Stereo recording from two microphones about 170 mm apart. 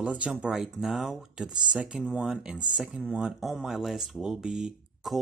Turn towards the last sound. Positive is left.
turn(degrees=0)  # may be behind; listen again after turning